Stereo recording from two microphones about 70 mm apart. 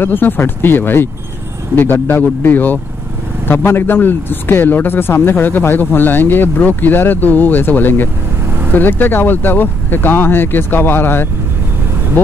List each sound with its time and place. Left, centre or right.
0.0 s speech: left